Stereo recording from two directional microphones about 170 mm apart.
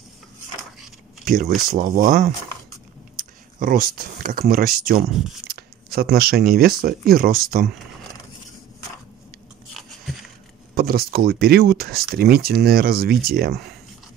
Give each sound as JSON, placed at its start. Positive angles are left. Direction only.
{"t": 1.2, "sound": "speech", "side_deg": -55}
{"t": 3.5, "sound": "speech", "side_deg": -55}
{"t": 9.8, "sound": "biting", "side_deg": 0}
{"t": 10.8, "sound": "speech", "side_deg": -65}